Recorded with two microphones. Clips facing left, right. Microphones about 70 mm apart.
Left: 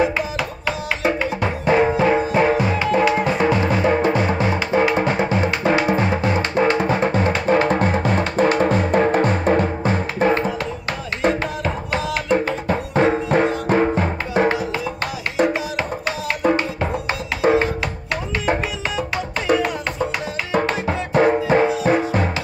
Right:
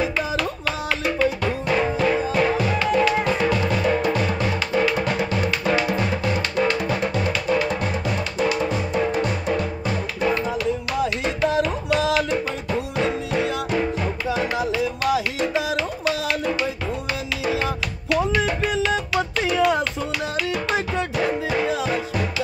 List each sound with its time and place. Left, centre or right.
1.0 s music: left
12.3 s music: left
17.4 s music: left
21.1 s music: left